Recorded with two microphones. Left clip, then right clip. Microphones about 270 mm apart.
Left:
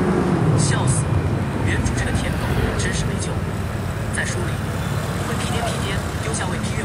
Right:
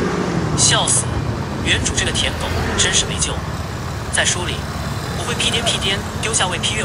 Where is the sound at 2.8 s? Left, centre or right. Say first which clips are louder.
Right 9 dB; right.